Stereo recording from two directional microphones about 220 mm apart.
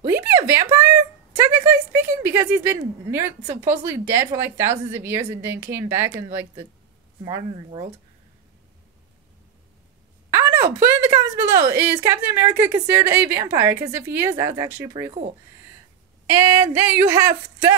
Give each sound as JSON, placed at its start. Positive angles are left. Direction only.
{"t": 0.2, "sound": "a sound", "side_deg": -10}
{"t": 1.3, "sound": "a woman's voice", "side_deg": -10}
{"t": 10.3, "sound": "a woman's voice", "side_deg": -10}
{"t": 16.3, "sound": "a woman's voice", "side_deg": -10}